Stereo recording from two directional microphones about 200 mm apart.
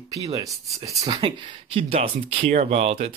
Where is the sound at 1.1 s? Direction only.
30° right (ahead or behind).